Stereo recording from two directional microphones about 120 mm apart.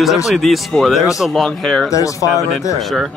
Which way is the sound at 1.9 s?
30° left (ahead or behind).